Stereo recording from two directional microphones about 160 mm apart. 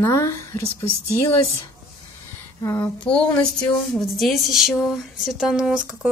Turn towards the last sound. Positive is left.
turn(degrees=-5)  # may be behind; listen again after turning